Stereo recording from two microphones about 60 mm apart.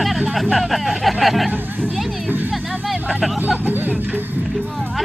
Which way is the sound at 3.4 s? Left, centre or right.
Right.